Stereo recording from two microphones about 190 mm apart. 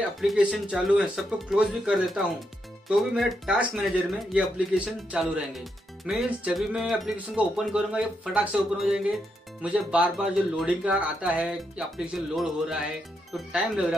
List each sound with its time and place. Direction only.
0.2 s speech: centre (ahead or behind)